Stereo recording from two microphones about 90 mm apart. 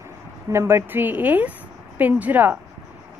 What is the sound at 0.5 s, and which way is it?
Speech, 30° right (ahead or behind).